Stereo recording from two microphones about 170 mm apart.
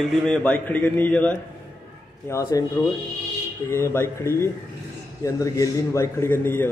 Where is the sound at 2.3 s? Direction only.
20° left (ahead or behind).